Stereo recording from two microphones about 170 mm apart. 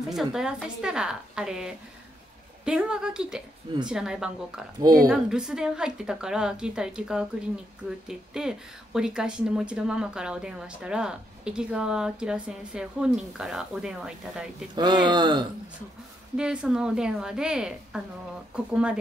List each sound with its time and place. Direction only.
0.1 s speech: centre (ahead or behind)
4.7 s speech: 20° right (ahead or behind)
5.0 s speech: 5° right (ahead or behind)
14.8 s speech: 25° right (ahead or behind)
16.3 s speech: 5° right (ahead or behind)